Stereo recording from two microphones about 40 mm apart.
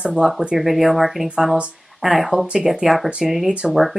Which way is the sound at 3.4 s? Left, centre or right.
Centre.